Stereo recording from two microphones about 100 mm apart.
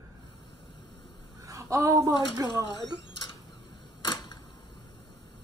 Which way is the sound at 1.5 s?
35° right (ahead or behind).